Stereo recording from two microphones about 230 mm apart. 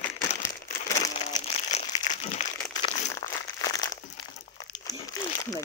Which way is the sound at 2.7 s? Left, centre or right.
Centre.